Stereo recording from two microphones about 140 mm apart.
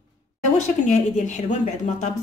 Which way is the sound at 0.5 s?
60° left (ahead or behind).